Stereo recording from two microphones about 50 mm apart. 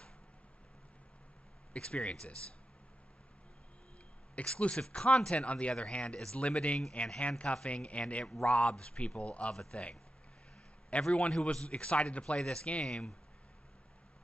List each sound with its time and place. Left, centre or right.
1.7 s speech: left
4.4 s speech: left